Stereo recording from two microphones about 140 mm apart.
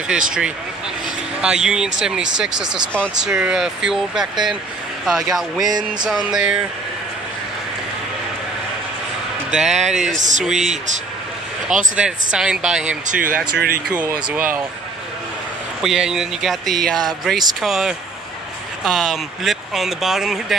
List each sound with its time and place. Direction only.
0.1 s speech: 5° right (ahead or behind)
5.7 s a sound: 30° right (ahead or behind)
6.3 s speech: 5° right (ahead or behind)
9.5 s speech: 5° right (ahead or behind)
10.1 s speech: 60° right (ahead or behind)
10.4 s speech: 5° right (ahead or behind)
13.1 s speech: 80° right
14.3 s speech: 10° right (ahead or behind)
15.8 s speech: 5° right (ahead or behind)